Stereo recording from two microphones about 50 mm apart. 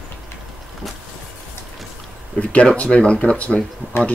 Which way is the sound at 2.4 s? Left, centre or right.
Left.